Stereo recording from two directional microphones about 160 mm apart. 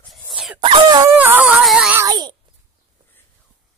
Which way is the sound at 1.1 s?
10° right (ahead or behind).